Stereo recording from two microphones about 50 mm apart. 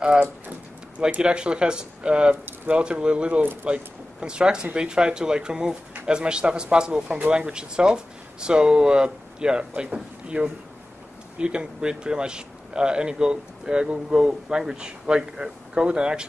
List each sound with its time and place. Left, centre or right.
0.0 s speech: right